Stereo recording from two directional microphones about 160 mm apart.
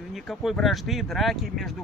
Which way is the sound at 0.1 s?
Centre (ahead or behind).